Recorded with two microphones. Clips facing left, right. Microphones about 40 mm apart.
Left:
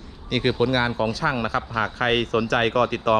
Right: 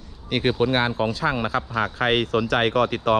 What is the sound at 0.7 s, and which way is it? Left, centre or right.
Speech, right.